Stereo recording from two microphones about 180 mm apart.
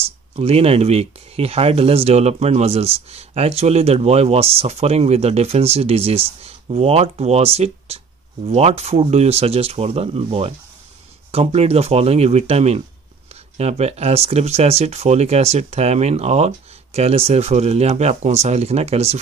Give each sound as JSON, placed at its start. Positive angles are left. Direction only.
{"t": 0.0, "sound": "speech", "side_deg": -35}